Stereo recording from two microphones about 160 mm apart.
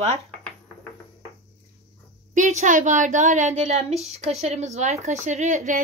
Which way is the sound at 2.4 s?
50° right (ahead or behind).